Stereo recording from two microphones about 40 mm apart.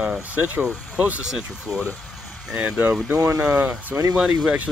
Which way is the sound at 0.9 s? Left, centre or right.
Right.